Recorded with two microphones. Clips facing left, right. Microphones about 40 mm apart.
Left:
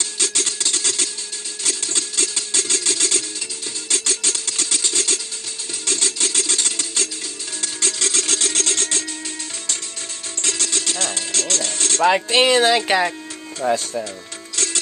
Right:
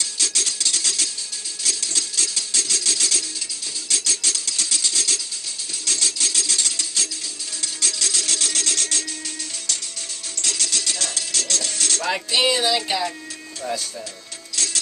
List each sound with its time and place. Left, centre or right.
0.0 s music: left
1.6 s a sound: left
7.6 s music: left
10.4 s music: left
12.8 s speech: left
13.6 s speech: left
14.5 s music: left